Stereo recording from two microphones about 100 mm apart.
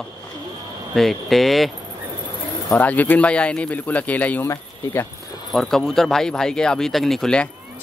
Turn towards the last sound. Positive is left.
turn(degrees=5)  # may be behind; listen again after turning